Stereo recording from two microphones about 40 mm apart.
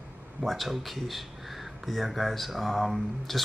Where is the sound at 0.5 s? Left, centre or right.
Centre.